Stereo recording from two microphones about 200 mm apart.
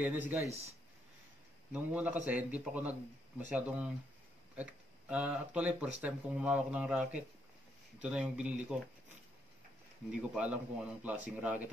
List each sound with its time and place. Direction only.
0.0 s speech: 10° right (ahead or behind)
0.5 s speech: 30° right (ahead or behind)
1.7 s speech: 5° right (ahead or behind)
10.3 s speech: 5° right (ahead or behind)